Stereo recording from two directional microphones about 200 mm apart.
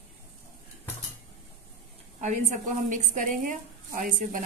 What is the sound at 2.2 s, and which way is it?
A woman's voice, 40° right (ahead or behind).